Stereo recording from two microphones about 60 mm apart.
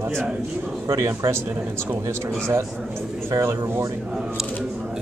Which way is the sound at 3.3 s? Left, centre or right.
Right.